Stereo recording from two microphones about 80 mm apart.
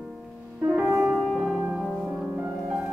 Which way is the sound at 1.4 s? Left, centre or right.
Centre.